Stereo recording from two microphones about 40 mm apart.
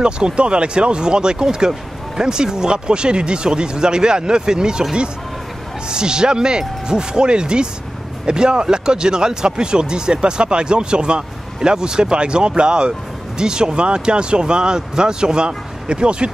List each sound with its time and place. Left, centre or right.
0.0 s speech: right
5.9 s speech: centre